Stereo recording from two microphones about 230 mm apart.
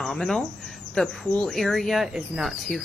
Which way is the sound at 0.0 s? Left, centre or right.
Centre.